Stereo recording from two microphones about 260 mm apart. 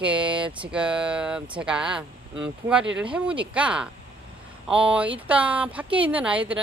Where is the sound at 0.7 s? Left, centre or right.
Centre.